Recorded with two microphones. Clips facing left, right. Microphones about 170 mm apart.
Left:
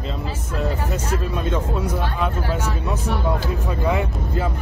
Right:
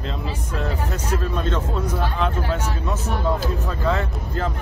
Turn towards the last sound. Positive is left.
turn(degrees=10)  # may be behind; listen again after turning